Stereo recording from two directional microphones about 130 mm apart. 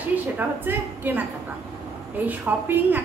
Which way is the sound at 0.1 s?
15° right (ahead or behind).